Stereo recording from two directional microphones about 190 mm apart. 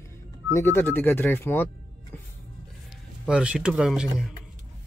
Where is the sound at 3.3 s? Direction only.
5° right (ahead or behind).